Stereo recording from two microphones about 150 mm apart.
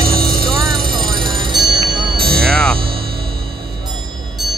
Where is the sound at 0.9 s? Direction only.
30° right (ahead or behind).